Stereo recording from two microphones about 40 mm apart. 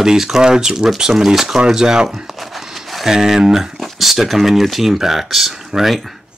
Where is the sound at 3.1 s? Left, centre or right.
Centre.